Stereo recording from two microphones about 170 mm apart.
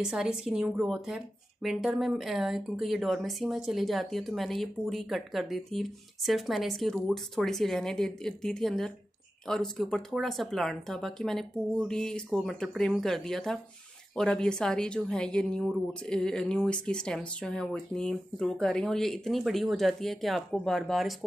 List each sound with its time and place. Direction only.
0.0 s a woman's voice: 5° right (ahead or behind)